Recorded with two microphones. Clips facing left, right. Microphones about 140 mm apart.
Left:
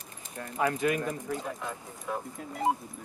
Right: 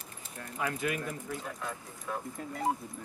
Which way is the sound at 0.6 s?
35° left (ahead or behind).